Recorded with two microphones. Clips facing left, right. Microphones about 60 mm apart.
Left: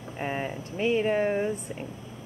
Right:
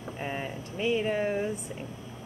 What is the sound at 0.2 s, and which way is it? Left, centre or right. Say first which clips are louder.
Speech: left 4 dB; centre.